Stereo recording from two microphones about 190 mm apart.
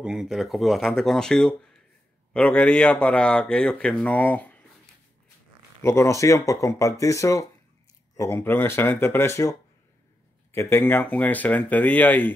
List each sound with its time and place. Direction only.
0.0 s a man's voice: 5° right (ahead or behind)
5.8 s a man's voice: 15° left (ahead or behind)